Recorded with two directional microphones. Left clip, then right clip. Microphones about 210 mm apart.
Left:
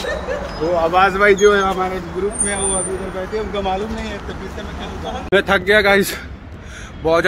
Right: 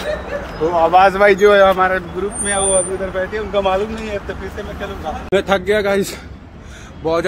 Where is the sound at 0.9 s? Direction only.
25° right (ahead or behind).